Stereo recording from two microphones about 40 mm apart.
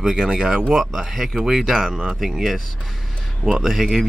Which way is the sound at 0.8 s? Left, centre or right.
Centre.